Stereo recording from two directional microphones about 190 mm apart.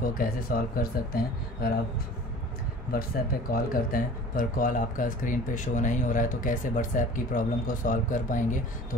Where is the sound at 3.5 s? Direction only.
50° left (ahead or behind).